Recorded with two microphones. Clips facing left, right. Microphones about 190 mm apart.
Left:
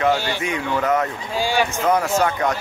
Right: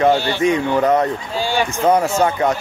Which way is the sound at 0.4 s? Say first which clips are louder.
Right 7 dB; 35° right (ahead or behind).